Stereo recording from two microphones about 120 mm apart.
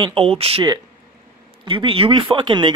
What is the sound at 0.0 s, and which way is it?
Speech, 50° right (ahead or behind).